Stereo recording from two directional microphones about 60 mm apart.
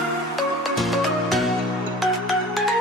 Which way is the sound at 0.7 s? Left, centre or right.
Centre.